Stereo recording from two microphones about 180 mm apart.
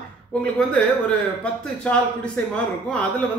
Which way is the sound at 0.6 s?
5° left (ahead or behind).